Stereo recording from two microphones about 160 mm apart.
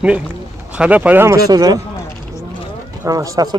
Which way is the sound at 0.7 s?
10° right (ahead or behind).